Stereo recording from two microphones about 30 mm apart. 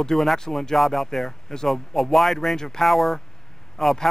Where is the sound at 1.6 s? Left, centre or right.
Centre.